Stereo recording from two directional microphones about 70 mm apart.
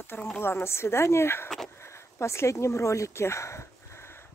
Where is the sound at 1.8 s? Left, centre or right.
Left.